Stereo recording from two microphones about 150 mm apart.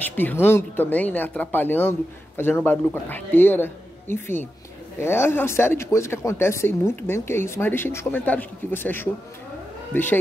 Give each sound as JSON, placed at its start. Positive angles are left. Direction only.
{"t": 0.0, "sound": "speech", "side_deg": 10}